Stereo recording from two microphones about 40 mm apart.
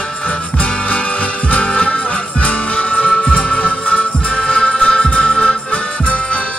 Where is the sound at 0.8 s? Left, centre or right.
Left.